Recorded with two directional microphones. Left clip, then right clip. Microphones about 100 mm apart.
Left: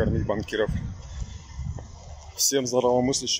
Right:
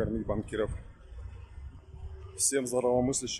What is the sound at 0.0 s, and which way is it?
Speech, 10° right (ahead or behind).